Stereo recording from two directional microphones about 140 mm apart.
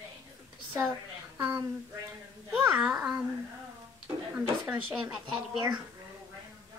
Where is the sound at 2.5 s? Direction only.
10° right (ahead or behind).